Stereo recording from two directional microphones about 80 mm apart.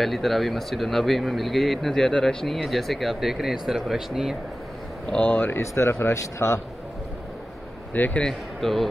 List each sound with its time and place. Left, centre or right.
0.0 s speech: centre
5.0 s speech: centre
5.6 s speech: left
7.9 s speech: left
8.2 s speech: centre